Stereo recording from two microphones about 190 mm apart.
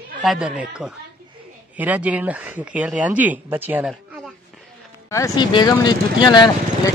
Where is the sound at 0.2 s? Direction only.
Centre (ahead or behind).